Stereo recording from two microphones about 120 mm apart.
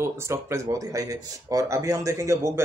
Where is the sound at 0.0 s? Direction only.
20° right (ahead or behind).